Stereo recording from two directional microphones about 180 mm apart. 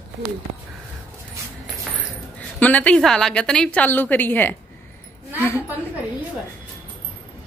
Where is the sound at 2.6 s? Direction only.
10° left (ahead or behind).